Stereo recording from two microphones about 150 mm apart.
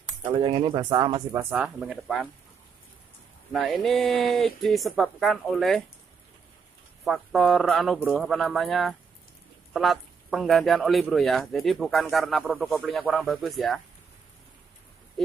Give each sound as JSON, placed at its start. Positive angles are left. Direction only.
{"t": 0.2, "sound": "speech", "side_deg": -30}
{"t": 1.4, "sound": "speech", "side_deg": -10}
{"t": 3.5, "sound": "speech", "side_deg": 0}
{"t": 7.1, "sound": "speech", "side_deg": 0}